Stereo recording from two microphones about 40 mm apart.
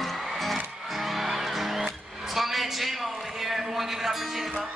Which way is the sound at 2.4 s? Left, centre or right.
Centre.